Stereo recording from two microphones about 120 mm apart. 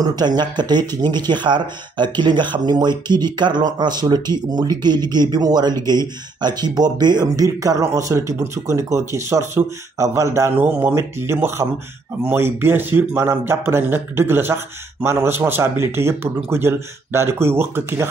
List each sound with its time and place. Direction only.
0.0 s speech: 35° right (ahead or behind)